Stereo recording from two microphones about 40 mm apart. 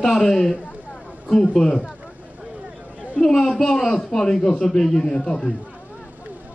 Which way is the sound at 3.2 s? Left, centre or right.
Centre.